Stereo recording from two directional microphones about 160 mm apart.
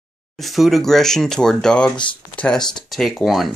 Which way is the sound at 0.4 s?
Centre (ahead or behind).